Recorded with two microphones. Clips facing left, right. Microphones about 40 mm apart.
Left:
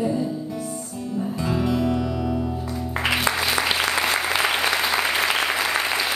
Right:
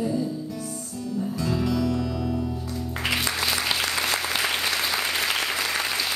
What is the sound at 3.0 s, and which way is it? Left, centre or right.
Applause, centre.